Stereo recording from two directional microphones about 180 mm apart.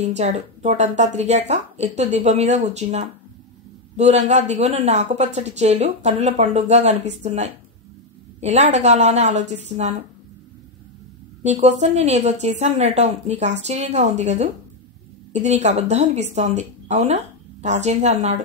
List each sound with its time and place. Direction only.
0.0 s speech: 40° right (ahead or behind)
11.4 s a woman's voice: 40° right (ahead or behind)